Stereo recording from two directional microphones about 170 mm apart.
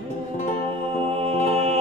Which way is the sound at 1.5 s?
35° right (ahead or behind).